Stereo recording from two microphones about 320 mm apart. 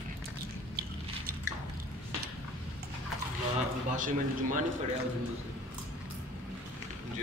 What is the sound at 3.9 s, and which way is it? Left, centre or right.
Speech, right.